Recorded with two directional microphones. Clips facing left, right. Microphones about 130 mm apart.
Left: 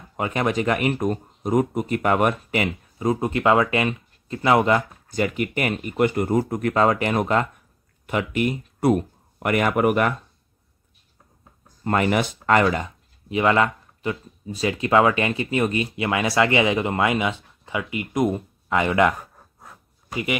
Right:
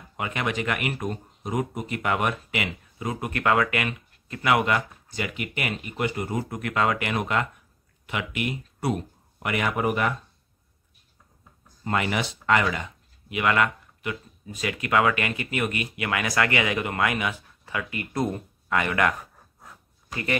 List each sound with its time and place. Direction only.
0.2 s speech: 40° left (ahead or behind)
5.0 s speech: 45° left (ahead or behind)
11.8 s speech: 45° left (ahead or behind)
13.3 s speech: 30° left (ahead or behind)